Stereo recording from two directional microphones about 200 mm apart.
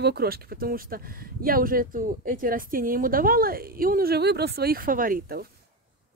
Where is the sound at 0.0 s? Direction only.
50° right (ahead or behind).